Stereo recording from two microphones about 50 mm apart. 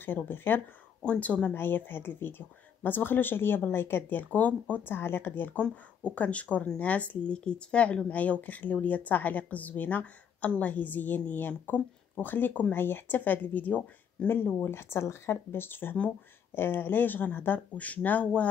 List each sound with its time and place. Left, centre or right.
0.0 s speech: left
1.0 s speech: left
1.5 s speech: left
4.8 s speech: left
5.6 s a woman's voice: left
12.7 s a woman's voice: left
14.6 s speech: left